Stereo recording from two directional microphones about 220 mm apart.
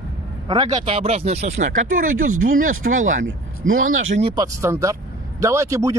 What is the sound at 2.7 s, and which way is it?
Speech, 35° right (ahead or behind).